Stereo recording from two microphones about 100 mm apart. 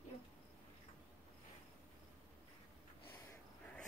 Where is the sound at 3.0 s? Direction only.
20° left (ahead or behind).